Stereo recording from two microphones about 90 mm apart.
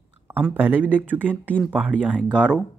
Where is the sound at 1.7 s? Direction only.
15° right (ahead or behind).